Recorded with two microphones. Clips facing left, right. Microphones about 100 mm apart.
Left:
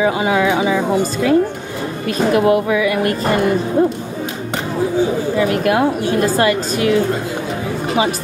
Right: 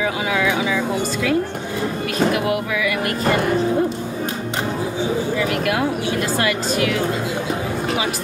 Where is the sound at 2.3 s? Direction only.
35° left (ahead or behind).